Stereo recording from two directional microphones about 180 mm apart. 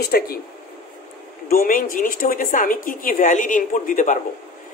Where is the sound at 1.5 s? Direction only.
50° left (ahead or behind).